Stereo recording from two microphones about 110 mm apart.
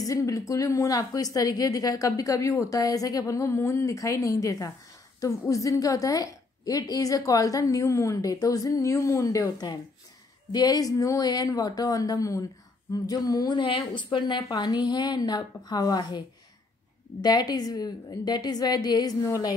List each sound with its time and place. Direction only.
0.0 s a woman's voice: 30° left (ahead or behind)
17.2 s a woman's voice: 40° left (ahead or behind)